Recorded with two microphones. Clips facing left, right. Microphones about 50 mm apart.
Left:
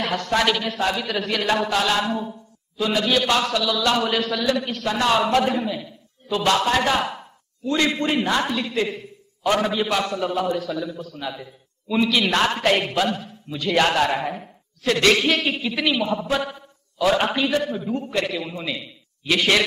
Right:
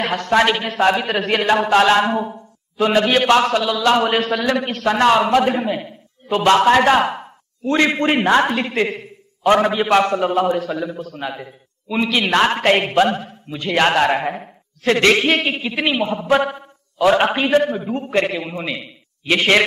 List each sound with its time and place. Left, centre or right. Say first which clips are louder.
0.0 s a man's voice: right 5 dB; right
16.3 s a man's voice: right 8 dB; right
17.1 s a man's voice: right 5 dB; right